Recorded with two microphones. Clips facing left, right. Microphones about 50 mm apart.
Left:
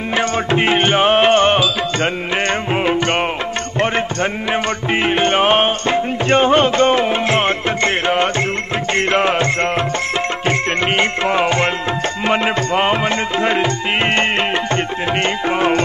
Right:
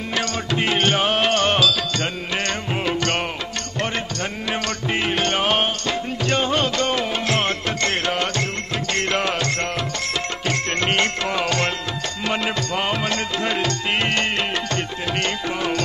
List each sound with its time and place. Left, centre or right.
0.1 s music: left
15.4 s music: left